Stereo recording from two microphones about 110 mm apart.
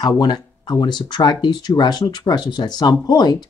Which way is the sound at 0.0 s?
40° left (ahead or behind).